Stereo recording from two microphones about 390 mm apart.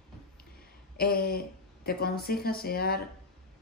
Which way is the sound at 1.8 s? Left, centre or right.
Left.